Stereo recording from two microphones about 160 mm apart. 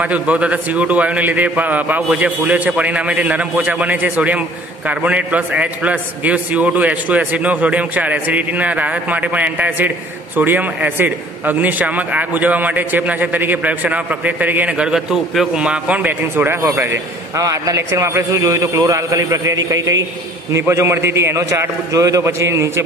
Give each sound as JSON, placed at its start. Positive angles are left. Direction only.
{"t": 0.0, "sound": "a man's voice", "side_deg": -10}